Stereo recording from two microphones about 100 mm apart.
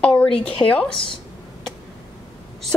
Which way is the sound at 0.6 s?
15° left (ahead or behind).